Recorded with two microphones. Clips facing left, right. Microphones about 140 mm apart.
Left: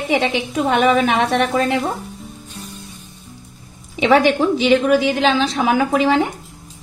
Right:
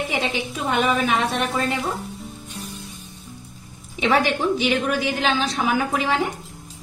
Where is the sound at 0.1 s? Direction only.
80° left.